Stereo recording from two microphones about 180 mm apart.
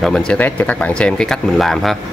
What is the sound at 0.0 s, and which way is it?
Speech, 5° left (ahead or behind).